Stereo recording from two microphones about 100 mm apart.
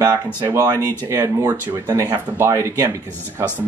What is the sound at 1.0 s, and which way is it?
Speech, 30° right (ahead or behind).